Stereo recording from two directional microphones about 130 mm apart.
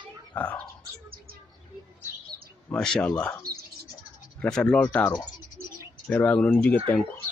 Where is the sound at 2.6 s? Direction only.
5° left (ahead or behind).